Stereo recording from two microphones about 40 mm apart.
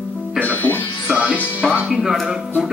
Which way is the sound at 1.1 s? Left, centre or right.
Right.